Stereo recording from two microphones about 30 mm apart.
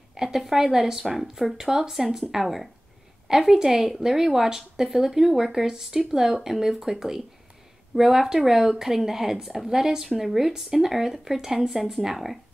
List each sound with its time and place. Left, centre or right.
0.1 s a sound: centre
0.4 s speech: centre
3.5 s speech: centre